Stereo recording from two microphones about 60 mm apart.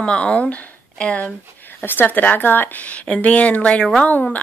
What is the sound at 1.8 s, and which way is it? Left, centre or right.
Speech, left.